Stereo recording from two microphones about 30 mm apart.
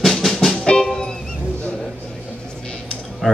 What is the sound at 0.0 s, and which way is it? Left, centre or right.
Music, centre.